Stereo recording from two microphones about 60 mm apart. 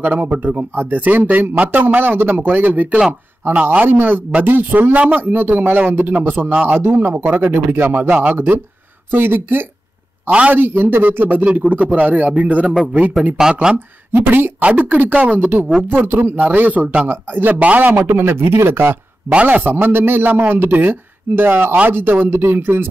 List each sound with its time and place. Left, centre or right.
0.0 s a man's voice: right
13.4 s speech: centre
13.7 s speech: right
14.6 s a man's voice: right
19.3 s speech: right